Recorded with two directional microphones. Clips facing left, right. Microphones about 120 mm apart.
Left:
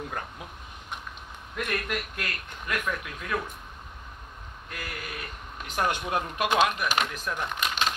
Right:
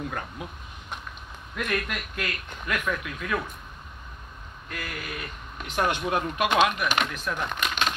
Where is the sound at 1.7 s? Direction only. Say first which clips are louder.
Right 1 dB; 35° left (ahead or behind).